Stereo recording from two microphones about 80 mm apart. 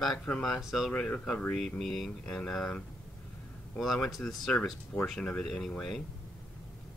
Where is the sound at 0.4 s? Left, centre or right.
Centre.